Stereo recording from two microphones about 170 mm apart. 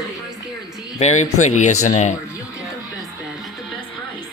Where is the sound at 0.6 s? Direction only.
20° left (ahead or behind).